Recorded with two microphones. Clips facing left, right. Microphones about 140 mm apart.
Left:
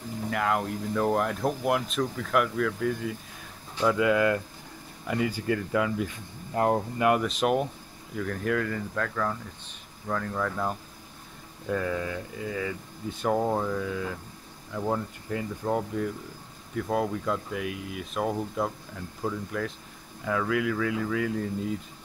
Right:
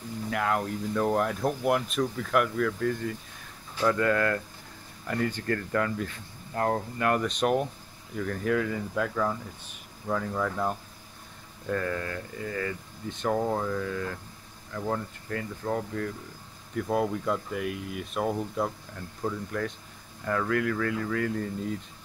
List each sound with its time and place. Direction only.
0.3 s speech: centre (ahead or behind); by 7.2 s 15° left (ahead or behind)
7.2 s speech: 5° left (ahead or behind)
16.7 s speech: centre (ahead or behind)